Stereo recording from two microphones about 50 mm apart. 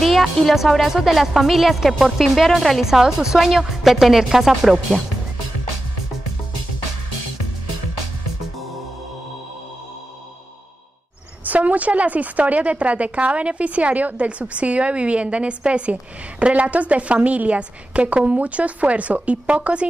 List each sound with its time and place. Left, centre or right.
0.0 s music: centre
0.5 s a woman's voice: centre
11.4 s a woman's voice: right